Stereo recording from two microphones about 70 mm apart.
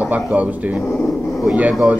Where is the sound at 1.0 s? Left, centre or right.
Centre.